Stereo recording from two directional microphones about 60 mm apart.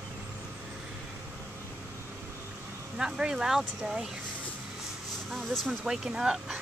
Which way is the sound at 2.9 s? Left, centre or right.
Centre.